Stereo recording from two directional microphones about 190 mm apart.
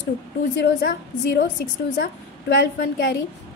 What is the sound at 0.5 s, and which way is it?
A woman's voice, 60° left (ahead or behind).